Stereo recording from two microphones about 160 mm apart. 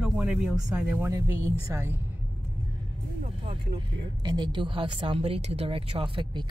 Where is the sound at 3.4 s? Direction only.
35° right (ahead or behind).